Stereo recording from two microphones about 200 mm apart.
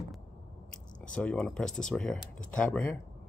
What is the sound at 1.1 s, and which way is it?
Speech, 5° left (ahead or behind).